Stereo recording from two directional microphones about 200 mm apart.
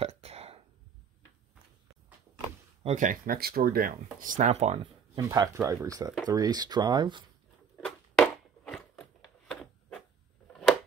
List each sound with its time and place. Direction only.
0.0 s hiccup: 30° right (ahead or behind)
2.8 s speech: 35° right (ahead or behind)
5.3 s speech: 15° right (ahead or behind)
7.8 s a sound: centre (ahead or behind)